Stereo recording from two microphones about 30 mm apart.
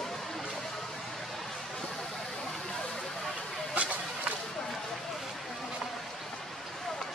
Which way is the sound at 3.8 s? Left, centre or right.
Right.